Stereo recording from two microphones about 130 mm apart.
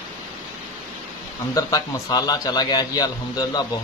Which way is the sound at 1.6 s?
25° left (ahead or behind).